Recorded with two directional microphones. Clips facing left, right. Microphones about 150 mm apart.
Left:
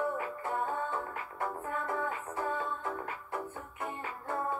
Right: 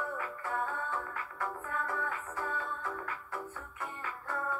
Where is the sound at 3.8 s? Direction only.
25° left (ahead or behind).